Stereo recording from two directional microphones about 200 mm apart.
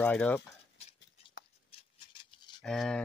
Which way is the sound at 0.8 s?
30° left (ahead or behind).